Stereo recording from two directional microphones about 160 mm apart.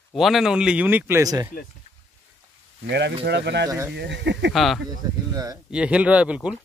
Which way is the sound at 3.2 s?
90° right.